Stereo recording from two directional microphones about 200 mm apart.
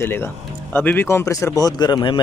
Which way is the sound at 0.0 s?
10° left (ahead or behind).